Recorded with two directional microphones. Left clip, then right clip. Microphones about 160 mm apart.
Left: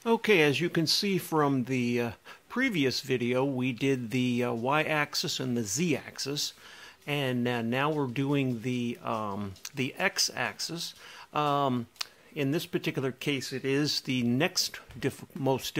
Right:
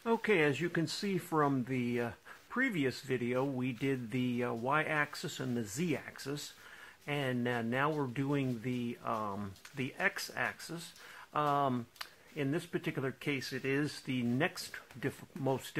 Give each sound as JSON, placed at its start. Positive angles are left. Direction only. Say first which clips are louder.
{"t": 0.0, "sound": "speech", "louder": "left 6 dB", "side_deg": 25}